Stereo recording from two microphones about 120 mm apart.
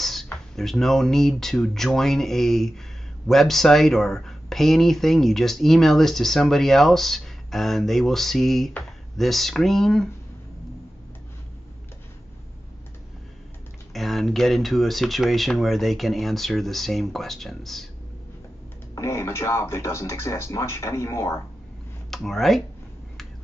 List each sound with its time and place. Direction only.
0.0 s speech: centre (ahead or behind)
13.9 s speech: centre (ahead or behind)
18.9 s speech: 25° left (ahead or behind)
22.1 s speech: centre (ahead or behind)